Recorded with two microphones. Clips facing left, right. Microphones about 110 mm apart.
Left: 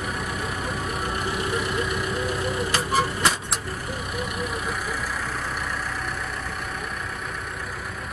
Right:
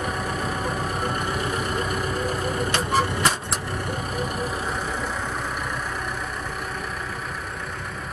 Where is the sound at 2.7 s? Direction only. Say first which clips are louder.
Right 1 dB; centre (ahead or behind).